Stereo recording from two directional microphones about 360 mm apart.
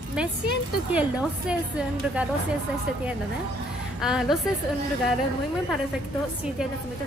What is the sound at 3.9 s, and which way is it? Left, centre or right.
Speech, centre.